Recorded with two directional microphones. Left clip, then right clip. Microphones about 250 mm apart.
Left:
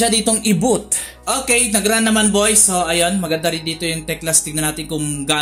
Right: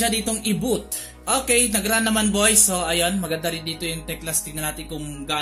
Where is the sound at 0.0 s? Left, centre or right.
Centre.